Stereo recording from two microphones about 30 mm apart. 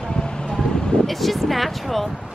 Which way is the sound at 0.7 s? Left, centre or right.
Left.